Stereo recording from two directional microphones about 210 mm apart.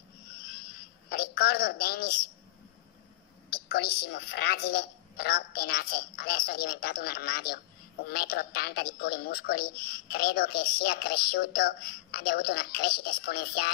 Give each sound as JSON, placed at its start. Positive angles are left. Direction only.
{"t": 1.1, "sound": "a woman's voice", "side_deg": 45}
{"t": 3.4, "sound": "a woman's voice", "side_deg": 50}